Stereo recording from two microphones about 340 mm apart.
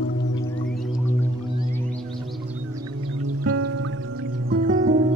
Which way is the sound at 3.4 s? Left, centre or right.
Right.